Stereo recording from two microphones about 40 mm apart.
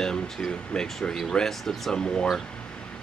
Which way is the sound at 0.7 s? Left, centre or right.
Left.